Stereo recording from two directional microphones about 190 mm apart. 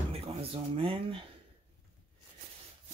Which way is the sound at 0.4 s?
30° right (ahead or behind).